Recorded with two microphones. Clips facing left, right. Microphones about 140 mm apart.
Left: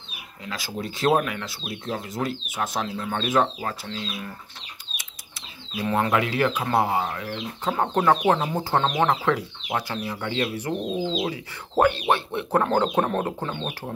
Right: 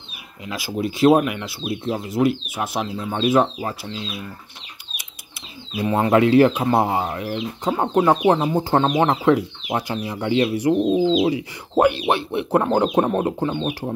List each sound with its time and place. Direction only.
0.5 s speech: 10° right (ahead or behind)
5.8 s speech: 25° right (ahead or behind)